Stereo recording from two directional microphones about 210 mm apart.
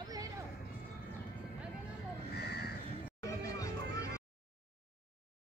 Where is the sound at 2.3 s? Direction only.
50° left (ahead or behind).